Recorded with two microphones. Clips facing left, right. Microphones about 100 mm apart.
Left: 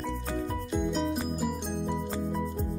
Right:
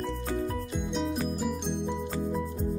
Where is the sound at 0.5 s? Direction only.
Centre (ahead or behind).